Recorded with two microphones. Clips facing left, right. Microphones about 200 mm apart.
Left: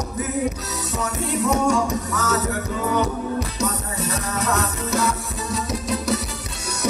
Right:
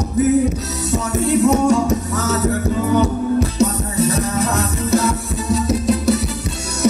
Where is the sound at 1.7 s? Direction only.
25° right (ahead or behind).